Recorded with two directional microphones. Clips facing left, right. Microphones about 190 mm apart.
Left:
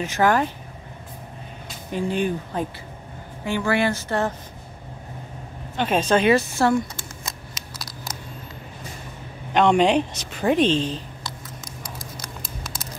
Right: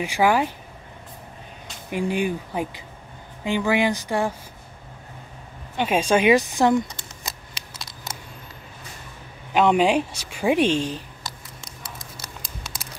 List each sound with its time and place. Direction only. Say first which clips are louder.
0.0 s a woman's voice: even; 10° right (ahead or behind)
1.9 s a woman's voice: even; 15° right (ahead or behind)
5.8 s a woman's voice: even; 10° right (ahead or behind)
7.7 s scissors: left 1 dB; 25° right (ahead or behind)
9.5 s a woman's voice: left 1 dB; 5° right (ahead or behind)